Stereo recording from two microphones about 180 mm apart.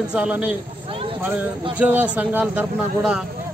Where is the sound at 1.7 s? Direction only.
10° right (ahead or behind).